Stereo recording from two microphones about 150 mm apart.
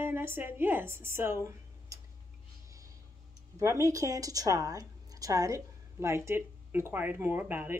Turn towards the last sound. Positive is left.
turn(degrees=-15)  # may be behind; listen again after turning